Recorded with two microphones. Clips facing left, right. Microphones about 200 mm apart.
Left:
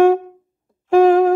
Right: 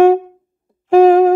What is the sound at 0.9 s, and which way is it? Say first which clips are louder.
Music: right 3 dB; centre (ahead or behind).